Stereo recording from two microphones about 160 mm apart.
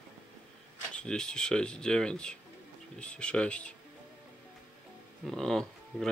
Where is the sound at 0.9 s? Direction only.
5° left (ahead or behind).